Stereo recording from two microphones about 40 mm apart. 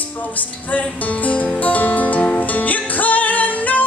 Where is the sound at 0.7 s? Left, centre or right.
Left.